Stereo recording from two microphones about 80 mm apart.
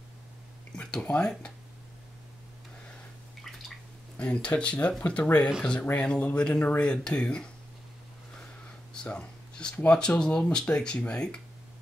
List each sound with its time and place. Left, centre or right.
0.7 s speech: centre
3.4 s drip: centre
4.2 s speech: centre
8.9 s speech: centre